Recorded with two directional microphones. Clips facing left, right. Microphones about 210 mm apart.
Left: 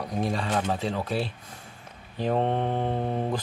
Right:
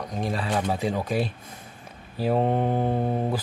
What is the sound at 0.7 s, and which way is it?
Speech, 15° right (ahead or behind).